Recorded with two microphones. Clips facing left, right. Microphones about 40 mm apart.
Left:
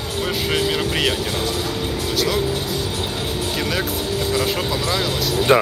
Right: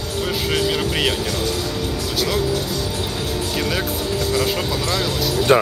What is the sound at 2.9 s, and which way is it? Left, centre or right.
Music, left.